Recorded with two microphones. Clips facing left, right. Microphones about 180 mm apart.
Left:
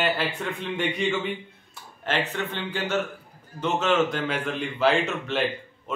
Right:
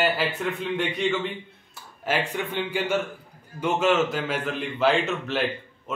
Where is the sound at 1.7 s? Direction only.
10° right (ahead or behind).